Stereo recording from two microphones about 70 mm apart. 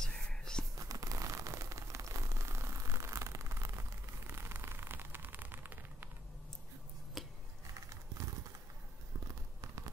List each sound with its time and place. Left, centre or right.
0.0 s whispering: centre
0.7 s a sound: right
7.2 s scissors: centre